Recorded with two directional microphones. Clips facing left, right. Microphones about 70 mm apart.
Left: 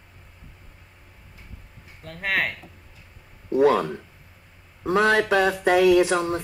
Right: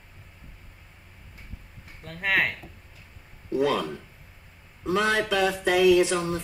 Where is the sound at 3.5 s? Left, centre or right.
Left.